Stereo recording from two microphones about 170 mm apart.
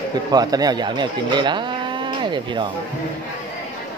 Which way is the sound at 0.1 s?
25° right (ahead or behind).